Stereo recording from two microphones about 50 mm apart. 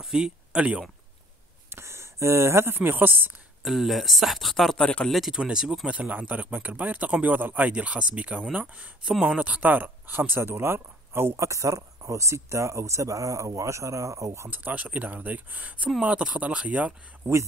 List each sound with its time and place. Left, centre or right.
0.0 s speech: centre
1.7 s speech: right
3.6 s speech: centre
4.7 s speech: left
5.1 s speech: centre
5.4 s speech: centre
5.9 s a man's voice: right
7.7 s speech: right
9.6 s speech: right
11.3 s speech: right
14.5 s a man's voice: right
17.2 s a man's voice: right